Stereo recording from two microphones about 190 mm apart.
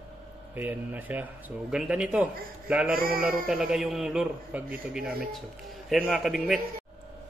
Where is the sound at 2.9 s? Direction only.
50° right (ahead or behind).